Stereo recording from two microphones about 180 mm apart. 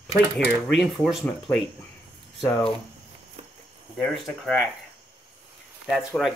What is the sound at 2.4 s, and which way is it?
Speech, 15° left (ahead or behind).